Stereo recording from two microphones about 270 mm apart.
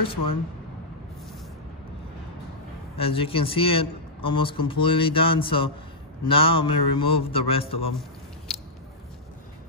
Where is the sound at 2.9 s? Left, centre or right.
Left.